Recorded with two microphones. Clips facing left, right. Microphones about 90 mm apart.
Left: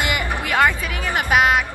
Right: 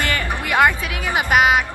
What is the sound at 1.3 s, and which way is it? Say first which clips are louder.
Music: right 1 dB; 5° right (ahead or behind).